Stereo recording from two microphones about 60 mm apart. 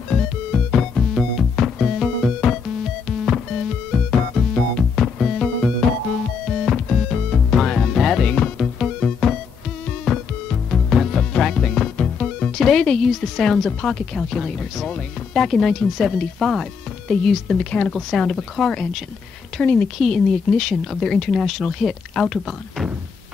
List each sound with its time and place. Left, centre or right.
0.1 s music: centre
13.0 s a woman's voice: centre; by 19.9 s left
20.0 s speech: centre